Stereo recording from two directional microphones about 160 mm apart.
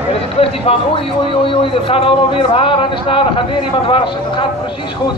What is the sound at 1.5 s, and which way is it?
Speech, 35° left (ahead or behind).